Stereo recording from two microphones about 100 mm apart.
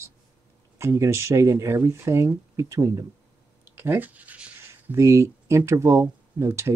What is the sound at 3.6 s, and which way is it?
Speech, 20° right (ahead or behind).